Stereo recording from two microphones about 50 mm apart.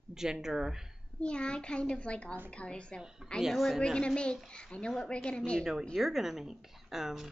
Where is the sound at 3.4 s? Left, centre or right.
Centre.